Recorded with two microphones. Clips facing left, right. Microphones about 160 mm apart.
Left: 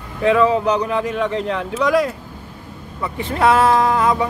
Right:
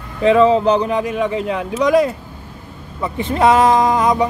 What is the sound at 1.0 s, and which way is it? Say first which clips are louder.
Speech: right 1 dB; 15° right (ahead or behind).